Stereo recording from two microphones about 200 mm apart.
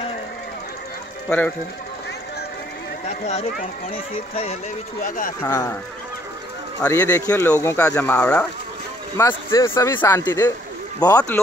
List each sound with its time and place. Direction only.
3.3 s speech: 35° left (ahead or behind)
5.0 s speech: 45° left (ahead or behind)
5.4 s speech: 15° left (ahead or behind)
6.8 s speech: 15° left (ahead or behind)